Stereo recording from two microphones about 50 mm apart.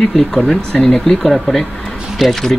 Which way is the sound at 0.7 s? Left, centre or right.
Centre.